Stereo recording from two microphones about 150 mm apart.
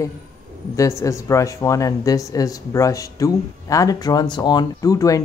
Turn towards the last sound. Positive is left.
turn(degrees=25)  # may be behind; listen again after turning